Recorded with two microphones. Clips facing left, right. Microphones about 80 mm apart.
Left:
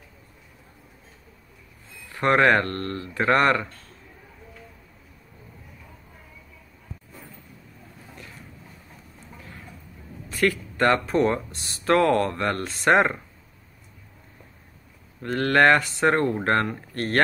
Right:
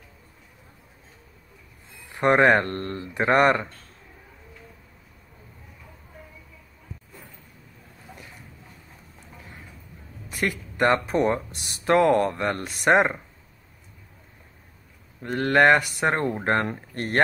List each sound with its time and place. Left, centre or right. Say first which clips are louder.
1.9 s speech: right 1 dB; centre
10.3 s speech: left 4 dB; centre
15.2 s speech: even; centre